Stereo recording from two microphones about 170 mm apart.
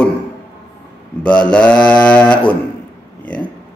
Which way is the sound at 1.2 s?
5° left (ahead or behind).